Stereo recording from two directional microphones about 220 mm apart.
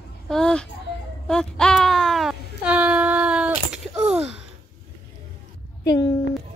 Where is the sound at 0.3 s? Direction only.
5° left (ahead or behind).